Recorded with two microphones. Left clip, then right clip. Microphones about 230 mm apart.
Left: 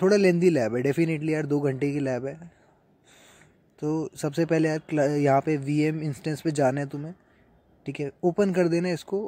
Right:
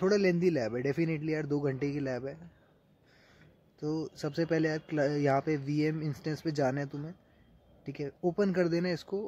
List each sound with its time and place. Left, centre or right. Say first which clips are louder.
0.0 s speech: left 7 dB; centre
3.8 s speech: left 7 dB; centre